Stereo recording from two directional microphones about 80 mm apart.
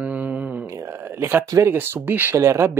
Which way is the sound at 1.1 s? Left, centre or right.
Right.